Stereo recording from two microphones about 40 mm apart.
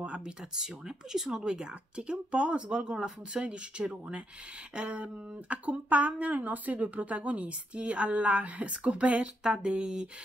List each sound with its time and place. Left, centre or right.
0.0 s speech: right
0.4 s speech: centre
5.5 s a woman's voice: right
9.4 s speech: right